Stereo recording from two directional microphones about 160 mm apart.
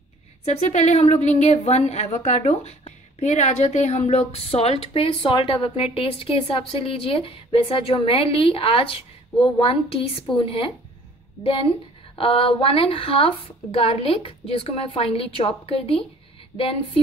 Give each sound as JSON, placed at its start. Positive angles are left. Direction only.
{"t": 0.5, "sound": "a woman's voice", "side_deg": 45}